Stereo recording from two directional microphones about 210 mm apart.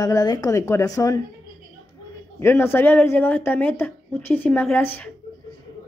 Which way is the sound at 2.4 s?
10° left (ahead or behind).